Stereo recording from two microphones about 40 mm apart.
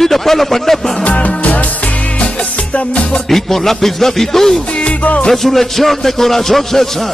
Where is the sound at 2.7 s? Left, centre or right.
Left.